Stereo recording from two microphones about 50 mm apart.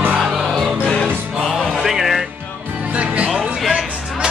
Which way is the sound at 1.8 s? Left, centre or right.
Centre.